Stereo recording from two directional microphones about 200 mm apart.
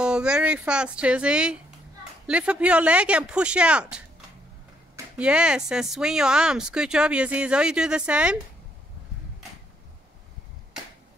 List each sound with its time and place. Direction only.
0.0 s speech: 5° right (ahead or behind)
4.9 s a sound: 5° right (ahead or behind)
5.7 s speech: 5° right (ahead or behind)